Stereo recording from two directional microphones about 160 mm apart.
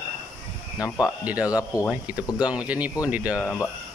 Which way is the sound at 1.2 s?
10° right (ahead or behind).